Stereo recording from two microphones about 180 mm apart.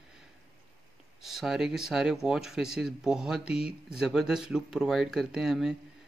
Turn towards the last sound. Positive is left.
turn(degrees=0)  # may be behind; listen again after turning